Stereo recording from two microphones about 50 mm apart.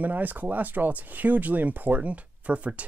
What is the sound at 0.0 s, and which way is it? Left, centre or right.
Speech, right.